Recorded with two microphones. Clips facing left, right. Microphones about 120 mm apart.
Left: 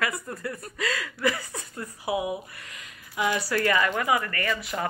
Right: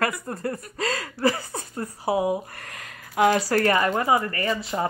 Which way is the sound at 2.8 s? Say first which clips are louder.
Right 8 dB; 50° right (ahead or behind).